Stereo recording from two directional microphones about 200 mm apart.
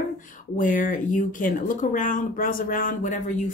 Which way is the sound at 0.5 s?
40° left (ahead or behind).